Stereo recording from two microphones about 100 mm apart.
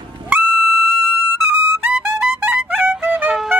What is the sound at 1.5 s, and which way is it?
Music, 20° right (ahead or behind).